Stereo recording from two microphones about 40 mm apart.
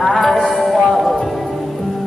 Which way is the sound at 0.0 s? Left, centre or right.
Centre.